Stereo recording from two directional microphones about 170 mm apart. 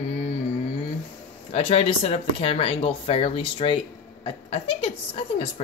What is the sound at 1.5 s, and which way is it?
Speech, 35° left (ahead or behind).